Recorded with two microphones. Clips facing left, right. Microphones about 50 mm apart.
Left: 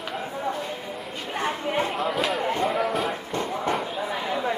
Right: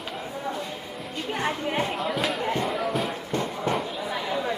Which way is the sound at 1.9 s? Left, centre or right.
Centre.